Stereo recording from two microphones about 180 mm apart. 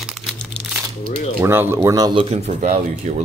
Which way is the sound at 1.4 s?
15° right (ahead or behind).